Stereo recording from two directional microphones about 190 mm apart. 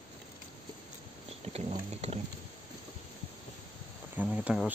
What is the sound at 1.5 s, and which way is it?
Music, 35° right (ahead or behind).